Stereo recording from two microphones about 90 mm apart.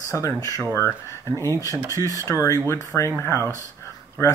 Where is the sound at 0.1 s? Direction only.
35° left (ahead or behind).